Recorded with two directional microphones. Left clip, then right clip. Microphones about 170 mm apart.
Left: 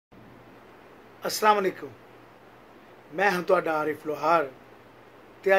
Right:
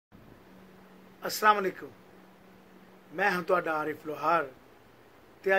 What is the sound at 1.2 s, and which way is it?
Speech, 5° left (ahead or behind).